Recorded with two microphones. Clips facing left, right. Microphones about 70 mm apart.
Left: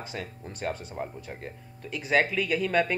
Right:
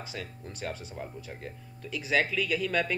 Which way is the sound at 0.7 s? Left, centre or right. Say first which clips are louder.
Left 5 dB; left.